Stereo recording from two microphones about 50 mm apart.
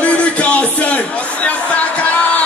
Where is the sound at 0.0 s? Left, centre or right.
Left.